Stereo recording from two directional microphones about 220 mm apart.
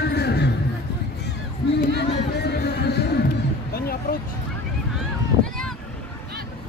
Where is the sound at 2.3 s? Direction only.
50° left (ahead or behind).